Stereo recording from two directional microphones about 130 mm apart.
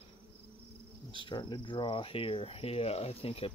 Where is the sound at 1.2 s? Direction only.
35° left (ahead or behind).